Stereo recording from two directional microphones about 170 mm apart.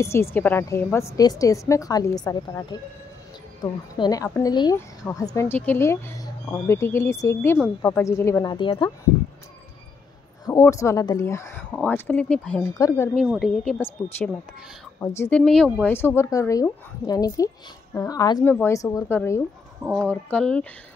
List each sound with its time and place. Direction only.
0.0 s a woman's voice: 15° left (ahead or behind)
3.9 s a woman's voice: 20° left (ahead or behind)
10.4 s speech: 20° left (ahead or behind)
13.1 s a woman's voice: centre (ahead or behind)
15.0 s speech: 15° left (ahead or behind)